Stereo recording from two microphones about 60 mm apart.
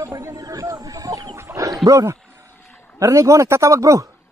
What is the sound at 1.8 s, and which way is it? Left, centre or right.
Speech, right.